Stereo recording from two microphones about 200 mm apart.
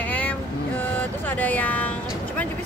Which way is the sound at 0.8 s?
10° left (ahead or behind).